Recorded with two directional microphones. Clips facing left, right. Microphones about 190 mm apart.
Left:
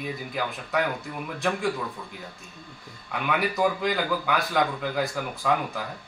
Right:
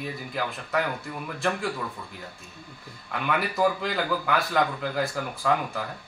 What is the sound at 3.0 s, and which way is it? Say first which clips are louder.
A man's voice: left 1 dB; centre (ahead or behind).